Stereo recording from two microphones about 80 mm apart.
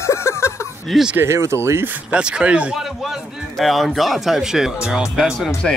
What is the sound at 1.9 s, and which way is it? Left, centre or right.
Speech, centre.